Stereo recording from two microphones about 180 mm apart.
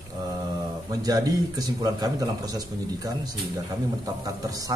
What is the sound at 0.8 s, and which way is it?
A man's voice, 20° right (ahead or behind).